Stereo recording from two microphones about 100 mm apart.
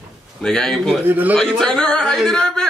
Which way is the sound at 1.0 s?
20° right (ahead or behind).